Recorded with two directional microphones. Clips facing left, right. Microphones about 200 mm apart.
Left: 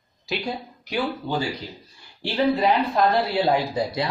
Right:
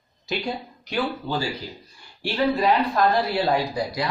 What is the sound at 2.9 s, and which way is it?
A woman's voice, 20° left (ahead or behind).